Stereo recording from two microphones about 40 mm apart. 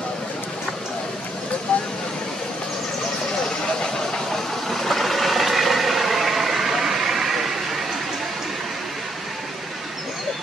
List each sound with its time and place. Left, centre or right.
1.7 s vehicle: left
3.8 s vehicle: centre